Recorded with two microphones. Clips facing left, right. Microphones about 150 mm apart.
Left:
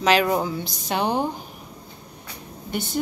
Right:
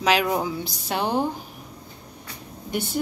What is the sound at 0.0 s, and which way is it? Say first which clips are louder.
A woman's voice: left 2 dB; 5° right (ahead or behind).